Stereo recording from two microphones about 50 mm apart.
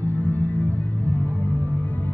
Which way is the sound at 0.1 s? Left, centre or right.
Left.